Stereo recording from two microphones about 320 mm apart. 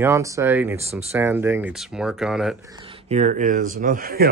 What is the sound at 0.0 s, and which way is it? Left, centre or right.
Speech, centre.